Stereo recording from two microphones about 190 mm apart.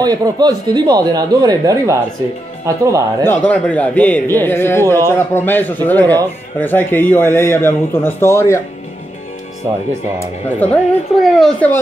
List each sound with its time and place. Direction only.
0.0 s speech: 20° right (ahead or behind)
3.3 s a man's voice: 5° left (ahead or behind)
10.2 s a man's voice: 10° left (ahead or behind)